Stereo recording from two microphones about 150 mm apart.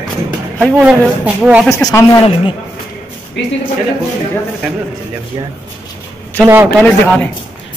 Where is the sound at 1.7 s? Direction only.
20° left (ahead or behind).